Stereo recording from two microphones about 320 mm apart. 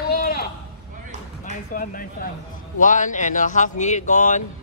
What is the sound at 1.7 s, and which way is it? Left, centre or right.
Speech, left.